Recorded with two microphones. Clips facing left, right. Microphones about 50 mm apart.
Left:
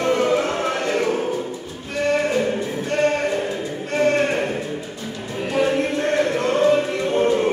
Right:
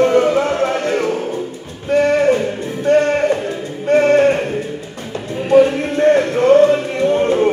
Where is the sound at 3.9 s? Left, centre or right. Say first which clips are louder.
Right 6 dB; right.